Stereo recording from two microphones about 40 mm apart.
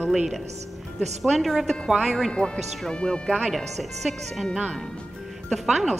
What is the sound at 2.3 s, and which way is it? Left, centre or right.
Speech, left.